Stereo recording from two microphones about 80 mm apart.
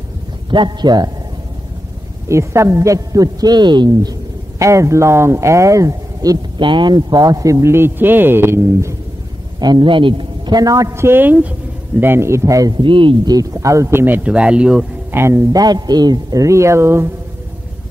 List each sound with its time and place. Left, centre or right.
0.5 s a man's voice: right
2.2 s a man's voice: right
4.6 s a man's voice: right
6.6 s a man's voice: right
9.6 s a man's voice: right
12.7 s speech: right
13.3 s speech: right; by 14.9 s centre
15.0 s speech: right
15.5 s a man's voice: right